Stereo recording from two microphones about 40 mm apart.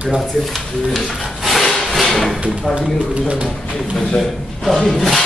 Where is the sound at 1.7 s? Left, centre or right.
Centre.